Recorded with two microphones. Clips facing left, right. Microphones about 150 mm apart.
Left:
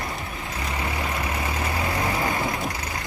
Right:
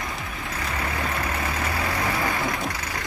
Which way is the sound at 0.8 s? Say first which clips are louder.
Even; 15° left (ahead or behind).